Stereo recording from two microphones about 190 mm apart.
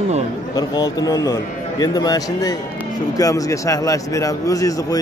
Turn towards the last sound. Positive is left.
turn(degrees=20)  # may be behind; listen again after turning